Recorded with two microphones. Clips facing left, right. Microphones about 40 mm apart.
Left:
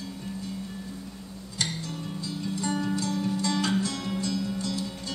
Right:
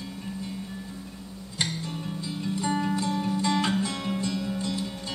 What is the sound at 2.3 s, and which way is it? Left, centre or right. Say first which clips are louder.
Music: right 2 dB; centre.